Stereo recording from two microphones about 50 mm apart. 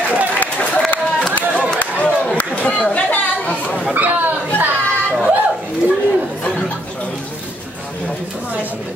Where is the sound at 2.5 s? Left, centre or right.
Left.